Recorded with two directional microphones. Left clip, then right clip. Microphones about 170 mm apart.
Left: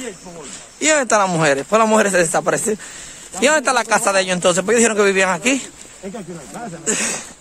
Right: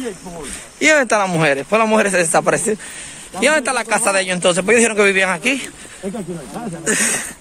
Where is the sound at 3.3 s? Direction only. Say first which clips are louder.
Left 1 dB; 45° left (ahead or behind).